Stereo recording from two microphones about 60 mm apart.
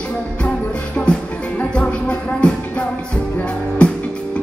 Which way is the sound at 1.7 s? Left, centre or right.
Centre.